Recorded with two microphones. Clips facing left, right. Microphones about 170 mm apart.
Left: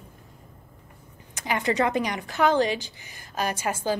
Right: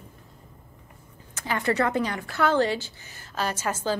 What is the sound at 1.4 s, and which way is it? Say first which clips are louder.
A woman's voice: even; 15° left (ahead or behind).